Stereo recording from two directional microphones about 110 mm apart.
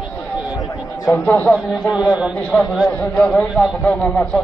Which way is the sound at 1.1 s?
15° left (ahead or behind).